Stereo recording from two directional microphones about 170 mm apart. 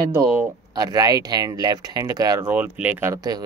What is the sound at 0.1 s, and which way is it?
Speech, 15° right (ahead or behind).